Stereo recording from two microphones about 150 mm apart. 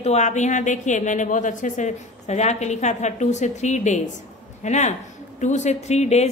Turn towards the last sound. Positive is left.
turn(degrees=50)  # may be behind; listen again after turning